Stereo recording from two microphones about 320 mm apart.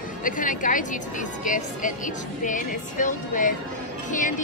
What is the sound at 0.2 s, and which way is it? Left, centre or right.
A woman's voice, left.